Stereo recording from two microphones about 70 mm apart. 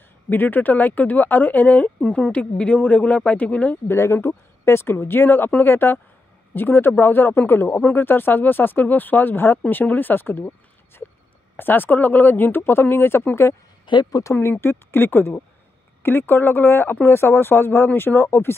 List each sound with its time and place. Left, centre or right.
0.3 s speech: left
2.0 s speech: centre
3.8 s speech: left
11.5 s speech: left
13.8 s speech: left
14.3 s speech: left